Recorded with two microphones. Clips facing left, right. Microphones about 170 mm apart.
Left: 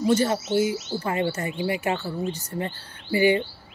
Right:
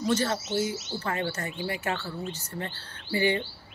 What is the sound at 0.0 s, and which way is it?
Speech, 15° left (ahead or behind).